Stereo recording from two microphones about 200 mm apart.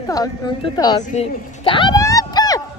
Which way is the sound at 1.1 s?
25° left (ahead or behind).